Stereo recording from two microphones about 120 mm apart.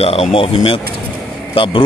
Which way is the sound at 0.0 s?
55° left (ahead or behind).